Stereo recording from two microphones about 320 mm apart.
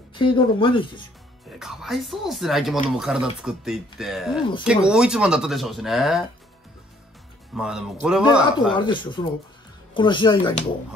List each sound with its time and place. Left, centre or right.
0.1 s speech: centre
1.6 s speech: centre
7.5 s speech: centre
8.7 s speech: centre